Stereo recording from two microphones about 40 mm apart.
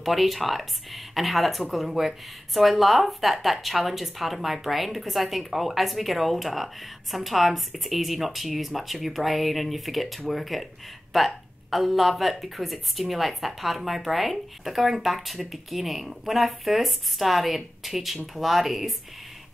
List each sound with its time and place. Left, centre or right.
0.0 s speech: centre